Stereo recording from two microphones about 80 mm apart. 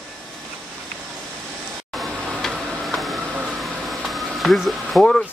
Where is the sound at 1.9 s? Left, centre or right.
Centre.